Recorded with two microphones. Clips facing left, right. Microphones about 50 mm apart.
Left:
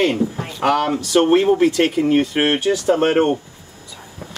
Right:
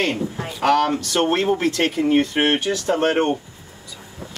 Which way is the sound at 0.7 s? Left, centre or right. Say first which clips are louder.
Even; centre.